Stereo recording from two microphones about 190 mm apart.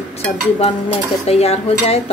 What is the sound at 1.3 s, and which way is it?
Speech, 35° left (ahead or behind).